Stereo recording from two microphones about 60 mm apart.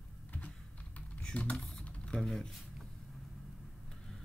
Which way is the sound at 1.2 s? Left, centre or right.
Centre.